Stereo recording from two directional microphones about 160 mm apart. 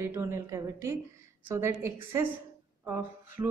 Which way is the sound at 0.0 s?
15° right (ahead or behind).